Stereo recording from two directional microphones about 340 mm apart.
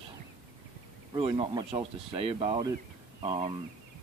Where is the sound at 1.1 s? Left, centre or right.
Centre.